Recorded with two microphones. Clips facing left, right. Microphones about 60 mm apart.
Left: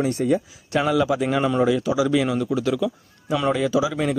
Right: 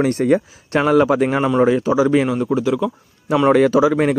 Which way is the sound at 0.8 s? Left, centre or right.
Right.